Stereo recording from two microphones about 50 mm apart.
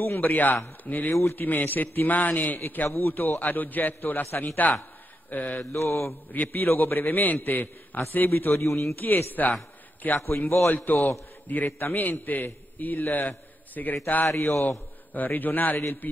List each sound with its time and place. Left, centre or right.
0.0 s a man's voice: left
5.3 s mantra: left
5.8 s a man's voice: left
6.3 s a man's voice: left
8.5 s a man's voice: left
8.9 s a man's voice: left
10.4 s a man's voice: left
10.7 s a man's voice: left